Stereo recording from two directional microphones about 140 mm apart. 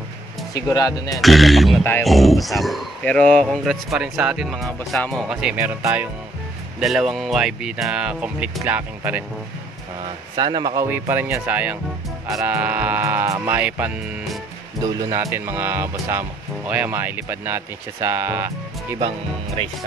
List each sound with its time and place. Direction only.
0.6 s speech: 25° left (ahead or behind)
1.1 s speech: centre (ahead or behind)
5.8 s speech: 20° right (ahead or behind)
6.8 s speech: centre (ahead or behind)
10.3 s a man's voice: 30° right (ahead or behind)
10.9 s speech: 15° right (ahead or behind)
14.8 s speech: 25° right (ahead or behind)